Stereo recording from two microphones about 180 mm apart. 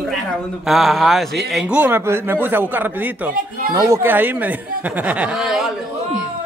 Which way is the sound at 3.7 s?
20° right (ahead or behind).